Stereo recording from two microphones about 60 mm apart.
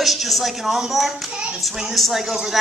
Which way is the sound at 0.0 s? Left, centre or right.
Centre.